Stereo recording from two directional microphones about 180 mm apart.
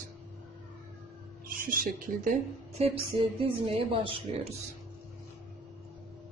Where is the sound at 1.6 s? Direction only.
50° right (ahead or behind).